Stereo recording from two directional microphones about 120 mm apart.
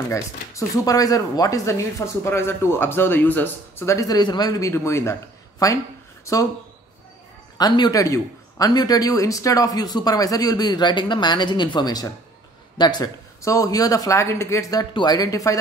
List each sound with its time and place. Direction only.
0.1 s speech: 30° left (ahead or behind)
7.5 s speech: 35° left (ahead or behind)